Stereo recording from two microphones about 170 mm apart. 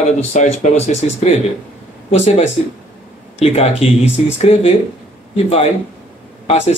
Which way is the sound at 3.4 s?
35° left (ahead or behind).